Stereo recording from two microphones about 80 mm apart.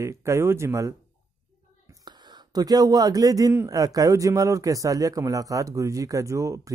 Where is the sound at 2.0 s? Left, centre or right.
Right.